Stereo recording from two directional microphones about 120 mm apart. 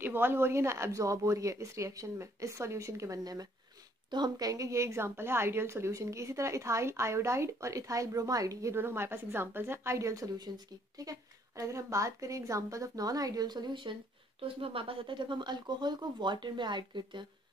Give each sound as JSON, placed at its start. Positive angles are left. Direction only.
{"t": 0.0, "sound": "a woman's voice", "side_deg": -15}